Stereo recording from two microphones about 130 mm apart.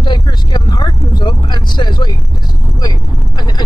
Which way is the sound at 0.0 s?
35° left (ahead or behind).